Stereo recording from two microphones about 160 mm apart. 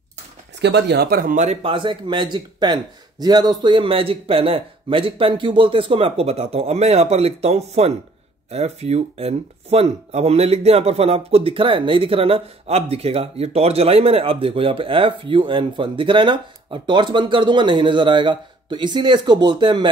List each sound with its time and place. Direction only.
0.6 s speech: 90° right; by 19.9 s 25° right (ahead or behind)